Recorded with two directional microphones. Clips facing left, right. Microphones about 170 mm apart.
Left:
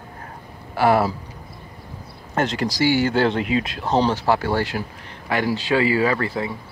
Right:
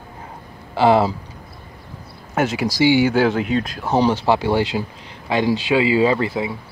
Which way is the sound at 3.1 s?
5° right (ahead or behind).